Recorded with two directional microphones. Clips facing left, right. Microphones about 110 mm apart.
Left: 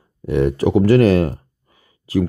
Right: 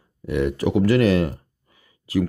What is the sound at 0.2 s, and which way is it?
Speech, 35° left (ahead or behind).